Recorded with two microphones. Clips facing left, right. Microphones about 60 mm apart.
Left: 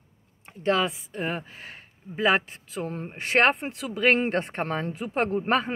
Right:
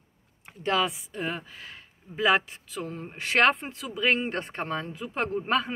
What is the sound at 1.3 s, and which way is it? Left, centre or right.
Speech, left.